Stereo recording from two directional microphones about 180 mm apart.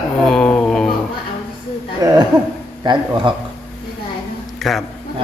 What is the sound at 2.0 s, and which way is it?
Speech, 20° right (ahead or behind).